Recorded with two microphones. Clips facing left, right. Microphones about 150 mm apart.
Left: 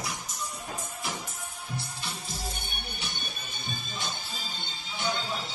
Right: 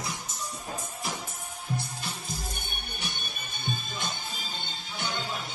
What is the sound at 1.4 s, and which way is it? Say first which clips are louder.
Music: right 3 dB; 45° right (ahead or behind).